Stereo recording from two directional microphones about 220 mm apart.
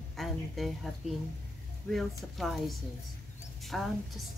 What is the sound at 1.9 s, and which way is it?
A woman's voice, centre (ahead or behind).